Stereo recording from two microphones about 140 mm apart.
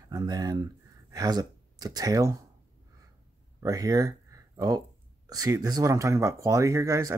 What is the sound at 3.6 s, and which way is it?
Speech, 25° right (ahead or behind).